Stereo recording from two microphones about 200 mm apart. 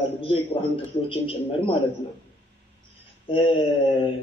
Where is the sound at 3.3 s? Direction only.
25° left (ahead or behind).